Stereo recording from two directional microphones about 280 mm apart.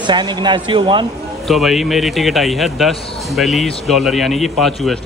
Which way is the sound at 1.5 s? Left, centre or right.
Centre.